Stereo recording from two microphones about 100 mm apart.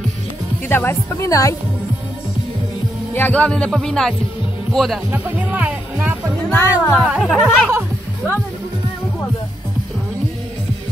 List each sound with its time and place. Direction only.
0.7 s speech: 25° left (ahead or behind)
3.2 s speech: 15° left (ahead or behind)
5.1 s speech: 15° right (ahead or behind)
5.9 s music: 25° right (ahead or behind)
6.8 s speech: 20° left (ahead or behind)
7.3 s speech: centre (ahead or behind)